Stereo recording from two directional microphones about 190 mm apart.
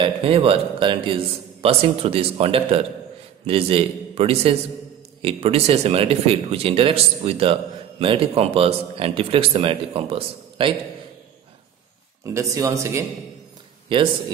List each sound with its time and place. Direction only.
0.0 s speech: 30° right (ahead or behind)
12.4 s speech: 15° right (ahead or behind)
13.9 s speech: 25° right (ahead or behind)